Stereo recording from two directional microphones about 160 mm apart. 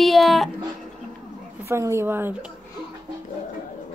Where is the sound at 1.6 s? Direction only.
15° right (ahead or behind).